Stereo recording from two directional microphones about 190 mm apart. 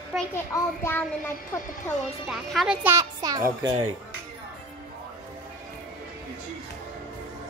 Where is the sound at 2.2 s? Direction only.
Centre (ahead or behind); by 3.7 s 20° right (ahead or behind).